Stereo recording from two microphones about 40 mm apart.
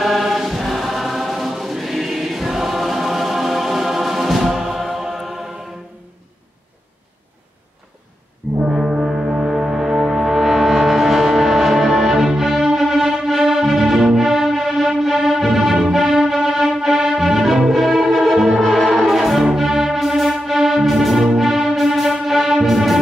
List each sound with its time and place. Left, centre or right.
0.0 s choir: centre
8.6 s foghorn: centre
9.0 s gong: centre
18.6 s music: centre